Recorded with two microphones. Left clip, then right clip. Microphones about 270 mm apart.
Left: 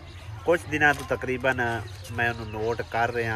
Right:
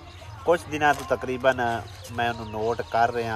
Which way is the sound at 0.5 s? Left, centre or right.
Centre.